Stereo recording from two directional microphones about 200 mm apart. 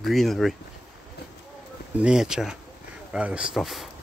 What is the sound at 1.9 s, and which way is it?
Speech, 5° right (ahead or behind).